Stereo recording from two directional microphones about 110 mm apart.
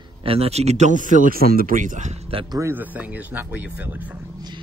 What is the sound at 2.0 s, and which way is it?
Speech, 90° right.